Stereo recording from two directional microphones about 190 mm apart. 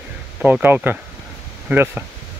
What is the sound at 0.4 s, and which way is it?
Speech, 10° right (ahead or behind).